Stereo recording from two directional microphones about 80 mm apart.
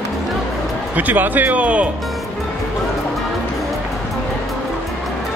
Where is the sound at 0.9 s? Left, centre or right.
Right.